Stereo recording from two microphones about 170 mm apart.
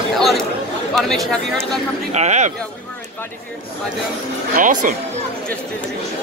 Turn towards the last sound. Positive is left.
turn(degrees=-50)  # may be behind; listen again after turning